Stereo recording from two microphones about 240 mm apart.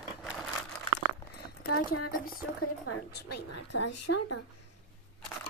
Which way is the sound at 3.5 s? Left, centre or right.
Left.